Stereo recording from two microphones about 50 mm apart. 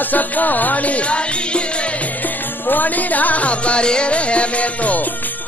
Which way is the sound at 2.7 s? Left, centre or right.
Left.